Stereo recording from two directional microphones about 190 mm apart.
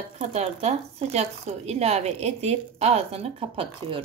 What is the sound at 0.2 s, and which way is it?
Speech, 35° right (ahead or behind).